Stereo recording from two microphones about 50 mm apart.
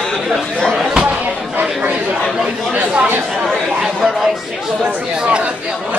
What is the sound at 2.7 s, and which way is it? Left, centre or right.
Speech, right.